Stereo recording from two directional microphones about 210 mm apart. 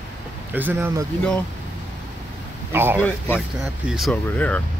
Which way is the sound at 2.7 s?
10° right (ahead or behind).